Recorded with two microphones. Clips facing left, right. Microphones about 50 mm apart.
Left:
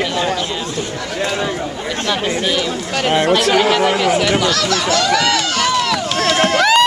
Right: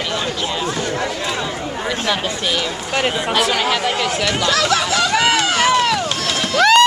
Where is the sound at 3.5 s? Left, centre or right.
Centre.